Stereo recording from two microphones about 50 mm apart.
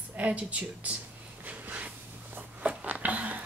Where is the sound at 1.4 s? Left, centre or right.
Right.